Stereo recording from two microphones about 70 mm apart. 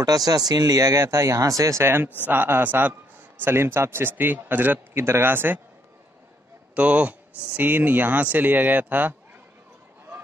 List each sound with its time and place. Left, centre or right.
0.0 s speech: right
2.2 s a man's voice: right
6.7 s speech: centre